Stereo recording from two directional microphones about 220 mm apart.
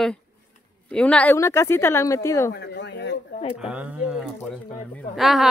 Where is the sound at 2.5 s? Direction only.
50° left (ahead or behind).